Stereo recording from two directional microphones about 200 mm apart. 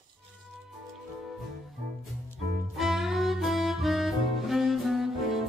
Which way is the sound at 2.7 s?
Centre (ahead or behind).